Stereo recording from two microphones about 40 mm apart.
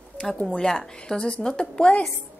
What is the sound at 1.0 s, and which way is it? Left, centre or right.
Speech, left.